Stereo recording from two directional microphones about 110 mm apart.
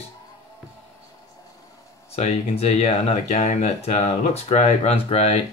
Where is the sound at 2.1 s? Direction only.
75° left (ahead or behind).